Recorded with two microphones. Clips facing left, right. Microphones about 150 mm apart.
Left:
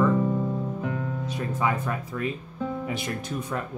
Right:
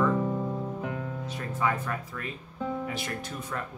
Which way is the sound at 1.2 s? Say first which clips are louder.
Left 2 dB; 15° left (ahead or behind).